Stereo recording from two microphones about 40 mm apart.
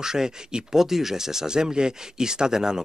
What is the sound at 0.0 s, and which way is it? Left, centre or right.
Speech, centre.